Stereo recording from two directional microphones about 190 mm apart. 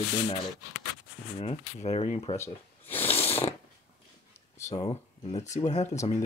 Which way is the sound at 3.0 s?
30° left (ahead or behind).